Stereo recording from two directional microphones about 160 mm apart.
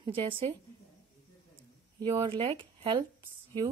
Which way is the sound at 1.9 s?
30° right (ahead or behind).